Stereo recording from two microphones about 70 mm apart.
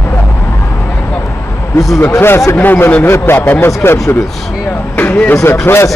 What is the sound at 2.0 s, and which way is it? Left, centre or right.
A man's voice, left.